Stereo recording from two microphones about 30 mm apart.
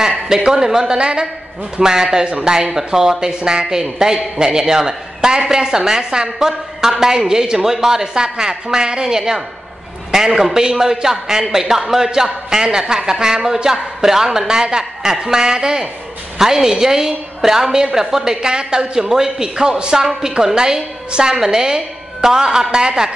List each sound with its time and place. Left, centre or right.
0.5 s speech: centre
0.9 s a man's voice: right
1.8 s speech: right
2.2 s a man's voice: right
2.5 s speech: right
18.4 s a woman's voice: right